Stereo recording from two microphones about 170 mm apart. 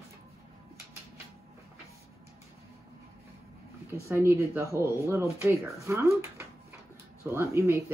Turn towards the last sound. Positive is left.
turn(degrees=-15)  # may be behind; listen again after turning